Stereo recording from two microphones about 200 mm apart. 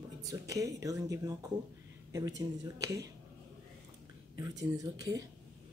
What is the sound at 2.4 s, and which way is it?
Speech, 15° right (ahead or behind).